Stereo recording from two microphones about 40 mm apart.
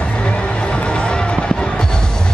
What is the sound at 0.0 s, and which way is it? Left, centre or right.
Run, left.